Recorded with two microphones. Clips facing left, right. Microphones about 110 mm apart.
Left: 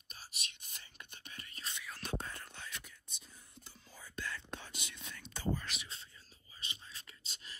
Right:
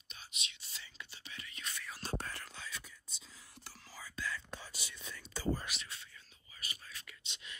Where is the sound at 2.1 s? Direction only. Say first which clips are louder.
Right 1 dB; 75° right (ahead or behind); by 4.1 s 90° right.